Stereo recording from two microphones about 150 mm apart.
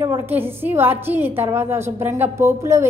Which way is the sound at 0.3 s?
15° right (ahead or behind).